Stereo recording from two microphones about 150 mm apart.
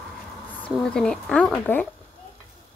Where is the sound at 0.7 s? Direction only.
5° left (ahead or behind).